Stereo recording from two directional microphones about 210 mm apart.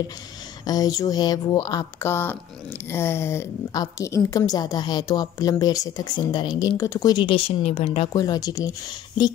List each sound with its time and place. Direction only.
0.7 s a woman's voice: 15° left (ahead or behind)